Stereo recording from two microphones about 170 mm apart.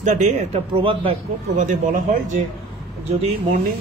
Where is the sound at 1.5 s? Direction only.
50° right (ahead or behind).